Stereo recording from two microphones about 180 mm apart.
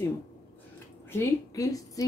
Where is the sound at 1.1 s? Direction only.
20° left (ahead or behind).